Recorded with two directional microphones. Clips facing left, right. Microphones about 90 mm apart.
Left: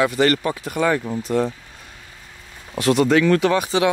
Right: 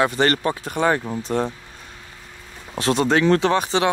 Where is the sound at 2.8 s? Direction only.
30° right (ahead or behind).